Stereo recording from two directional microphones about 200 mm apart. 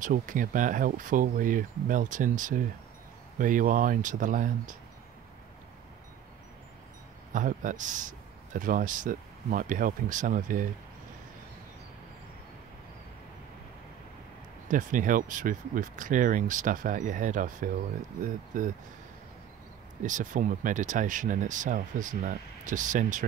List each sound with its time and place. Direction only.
0.0 s speech: 40° right (ahead or behind)
7.3 s speech: 40° right (ahead or behind)
14.7 s speech: 40° right (ahead or behind)
20.0 s speech: 40° right (ahead or behind)